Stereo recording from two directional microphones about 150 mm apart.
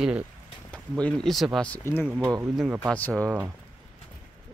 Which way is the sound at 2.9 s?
10° left (ahead or behind).